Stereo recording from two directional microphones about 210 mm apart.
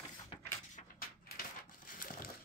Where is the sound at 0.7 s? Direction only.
40° left (ahead or behind).